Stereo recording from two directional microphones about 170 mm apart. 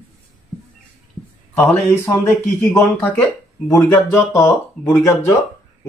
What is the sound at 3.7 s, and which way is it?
A man's voice, 20° left (ahead or behind).